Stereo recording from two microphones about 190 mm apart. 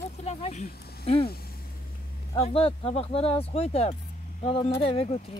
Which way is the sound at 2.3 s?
30° left (ahead or behind).